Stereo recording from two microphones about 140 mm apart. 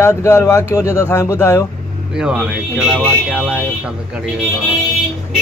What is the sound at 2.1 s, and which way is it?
Speech, 5° right (ahead or behind).